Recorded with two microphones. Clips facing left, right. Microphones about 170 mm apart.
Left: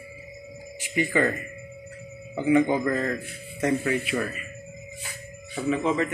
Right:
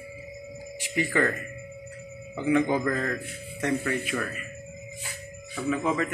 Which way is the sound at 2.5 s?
5° left (ahead or behind).